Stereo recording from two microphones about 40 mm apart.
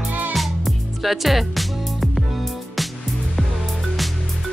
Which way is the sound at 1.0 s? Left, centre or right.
Centre.